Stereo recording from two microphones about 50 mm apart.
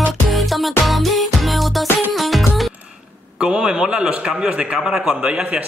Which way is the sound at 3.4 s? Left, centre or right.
Centre.